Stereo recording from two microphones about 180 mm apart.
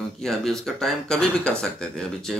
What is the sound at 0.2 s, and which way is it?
Speech, centre (ahead or behind).